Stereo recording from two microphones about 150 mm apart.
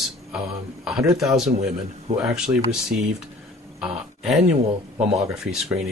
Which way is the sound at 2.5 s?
25° right (ahead or behind).